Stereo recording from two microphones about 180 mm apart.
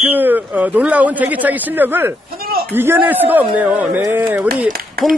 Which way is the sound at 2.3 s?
55° right (ahead or behind).